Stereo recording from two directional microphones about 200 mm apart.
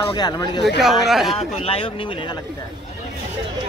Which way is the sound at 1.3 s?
30° left (ahead or behind).